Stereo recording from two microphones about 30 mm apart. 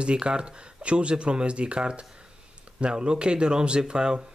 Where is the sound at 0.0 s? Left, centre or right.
Right.